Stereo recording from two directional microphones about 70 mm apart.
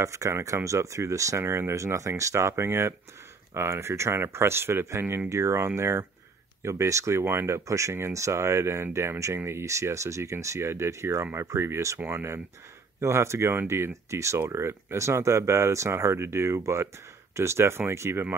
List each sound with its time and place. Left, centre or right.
0.0 s speech: right
1.4 s speech: right